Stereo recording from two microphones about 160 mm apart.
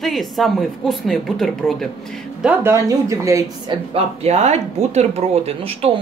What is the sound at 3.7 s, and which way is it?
Speech, 40° right (ahead or behind).